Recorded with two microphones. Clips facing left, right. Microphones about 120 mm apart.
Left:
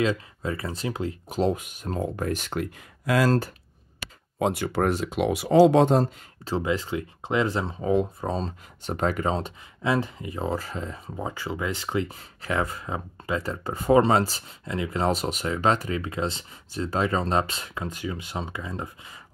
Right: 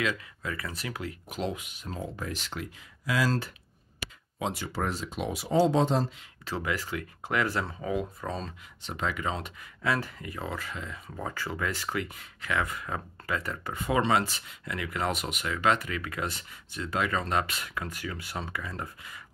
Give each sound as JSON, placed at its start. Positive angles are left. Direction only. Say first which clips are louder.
{"t": 0.0, "sound": "speech", "louder": "left 6 dB", "side_deg": 30}
{"t": 4.4, "sound": "speech", "louder": "left 8 dB", "side_deg": 60}
{"t": 6.4, "sound": "speech", "louder": "left 6 dB", "side_deg": 25}
{"t": 8.8, "sound": "speech", "louder": "left 6 dB", "side_deg": 45}
{"t": 11.1, "sound": "speech", "louder": "left 3 dB", "side_deg": 15}